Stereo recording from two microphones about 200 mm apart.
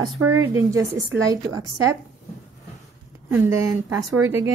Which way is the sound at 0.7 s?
70° right (ahead or behind).